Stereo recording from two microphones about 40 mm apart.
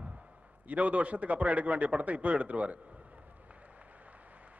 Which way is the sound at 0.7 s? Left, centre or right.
Right.